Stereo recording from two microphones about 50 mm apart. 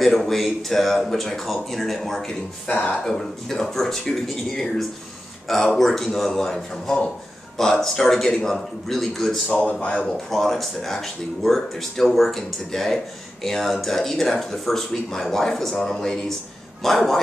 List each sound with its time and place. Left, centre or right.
0.0 s a man's voice: centre
9.7 s speech: left
10.0 s a man's voice: centre